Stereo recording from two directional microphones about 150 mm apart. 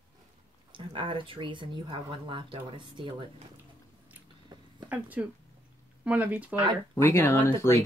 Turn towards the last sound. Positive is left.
turn(degrees=15)  # may be behind; listen again after turning